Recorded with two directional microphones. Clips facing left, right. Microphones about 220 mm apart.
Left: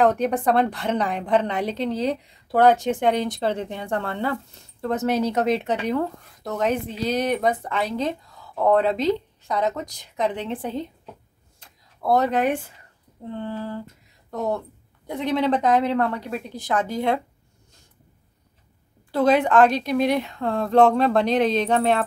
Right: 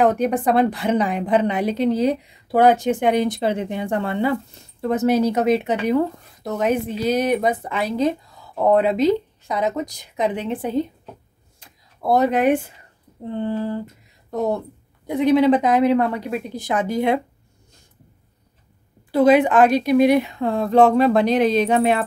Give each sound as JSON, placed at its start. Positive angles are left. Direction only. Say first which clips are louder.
{"t": 0.0, "sound": "speech", "louder": "right 2 dB", "side_deg": -5}
{"t": 11.6, "sound": "a sound", "louder": "right 2 dB", "side_deg": -15}
{"t": 13.4, "sound": "speech", "louder": "right 7 dB", "side_deg": -15}
{"t": 19.1, "sound": "speech", "louder": "right 3 dB", "side_deg": -10}